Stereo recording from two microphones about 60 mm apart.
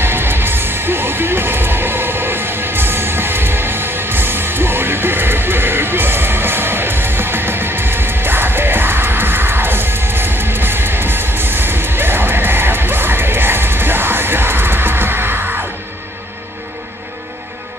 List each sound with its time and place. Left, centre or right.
0.0 s music: right